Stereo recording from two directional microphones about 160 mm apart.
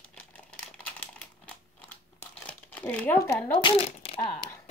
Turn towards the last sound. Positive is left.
turn(degrees=40)  # may be behind; listen again after turning